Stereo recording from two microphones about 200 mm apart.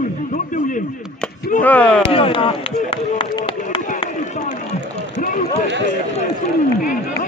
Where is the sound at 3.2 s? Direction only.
25° left (ahead or behind).